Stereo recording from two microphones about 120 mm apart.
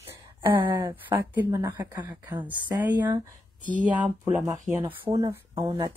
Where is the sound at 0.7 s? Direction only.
30° right (ahead or behind).